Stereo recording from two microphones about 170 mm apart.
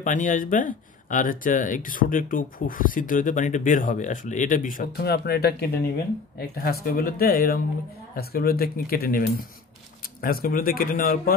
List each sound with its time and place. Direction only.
0.0 s speech: 50° left (ahead or behind)